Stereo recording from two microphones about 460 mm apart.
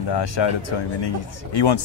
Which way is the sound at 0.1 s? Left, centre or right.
Left.